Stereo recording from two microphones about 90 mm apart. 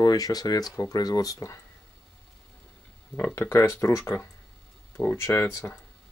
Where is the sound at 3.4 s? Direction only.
30° left (ahead or behind).